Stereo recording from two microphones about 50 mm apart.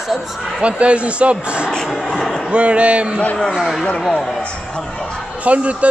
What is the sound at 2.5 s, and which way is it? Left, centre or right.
Speech, right.